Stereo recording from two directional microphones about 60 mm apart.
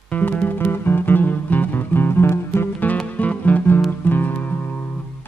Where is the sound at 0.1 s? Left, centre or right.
Left.